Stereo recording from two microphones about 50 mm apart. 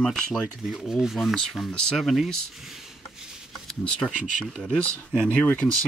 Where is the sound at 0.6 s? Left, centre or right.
Centre.